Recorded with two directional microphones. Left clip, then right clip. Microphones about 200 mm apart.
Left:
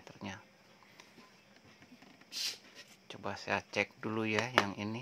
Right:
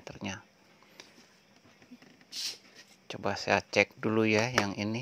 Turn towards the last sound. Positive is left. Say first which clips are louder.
# right 2 dB
turn(degrees=-30)  # may be behind; listen again after turning